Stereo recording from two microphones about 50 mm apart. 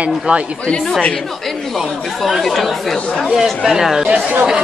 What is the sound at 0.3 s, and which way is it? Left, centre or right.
Speech, right.